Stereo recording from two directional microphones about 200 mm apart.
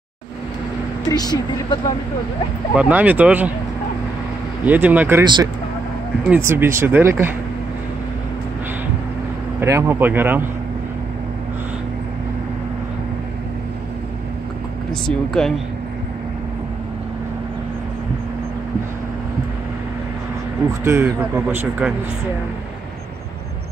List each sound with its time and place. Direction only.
1.0 s speech: 20° left (ahead or behind)
2.7 s speech: 5° right (ahead or behind)
4.6 s speech: 10° right (ahead or behind)
5.2 s speech: 20° right (ahead or behind)
6.2 s speech: 10° right (ahead or behind)
9.6 s speech: 15° right (ahead or behind)
15.0 s speech: centre (ahead or behind)
20.8 s speech: 10° right (ahead or behind)